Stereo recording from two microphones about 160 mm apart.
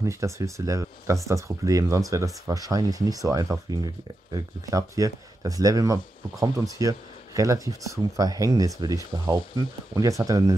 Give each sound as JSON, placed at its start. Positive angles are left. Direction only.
{"t": 0.0, "sound": "speech", "side_deg": -20}